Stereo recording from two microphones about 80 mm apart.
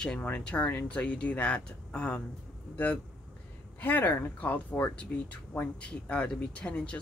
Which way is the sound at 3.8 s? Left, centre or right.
Left.